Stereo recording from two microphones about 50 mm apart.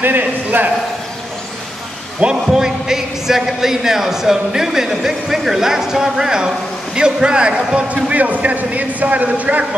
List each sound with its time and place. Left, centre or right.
0.0 s a man's voice: right
2.2 s a man's voice: centre